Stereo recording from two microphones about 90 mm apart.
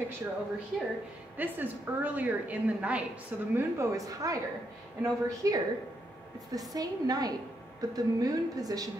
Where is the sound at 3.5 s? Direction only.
30° right (ahead or behind).